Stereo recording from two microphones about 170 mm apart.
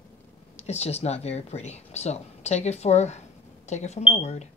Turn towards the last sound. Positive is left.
turn(degrees=40)  # may be behind; listen again after turning